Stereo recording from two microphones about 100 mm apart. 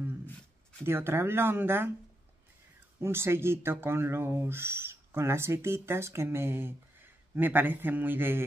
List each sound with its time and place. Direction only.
0.8 s speech: 25° right (ahead or behind)
3.0 s speech: 25° right (ahead or behind)